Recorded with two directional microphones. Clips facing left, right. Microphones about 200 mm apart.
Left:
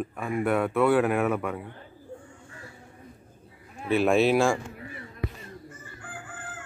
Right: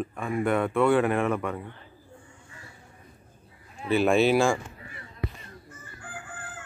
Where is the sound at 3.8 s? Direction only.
Centre (ahead or behind).